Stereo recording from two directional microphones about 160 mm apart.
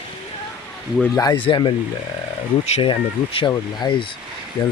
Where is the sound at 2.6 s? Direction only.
40° left (ahead or behind).